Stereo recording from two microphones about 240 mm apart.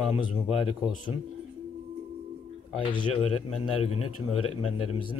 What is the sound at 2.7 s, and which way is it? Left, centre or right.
Speech, centre.